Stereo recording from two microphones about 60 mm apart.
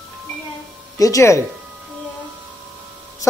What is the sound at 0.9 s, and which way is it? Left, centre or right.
Speech, left.